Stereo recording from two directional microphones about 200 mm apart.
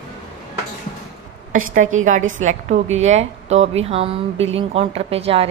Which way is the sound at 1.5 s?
40° right (ahead or behind).